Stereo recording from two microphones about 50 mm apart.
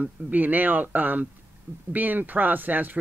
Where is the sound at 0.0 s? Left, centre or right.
Right.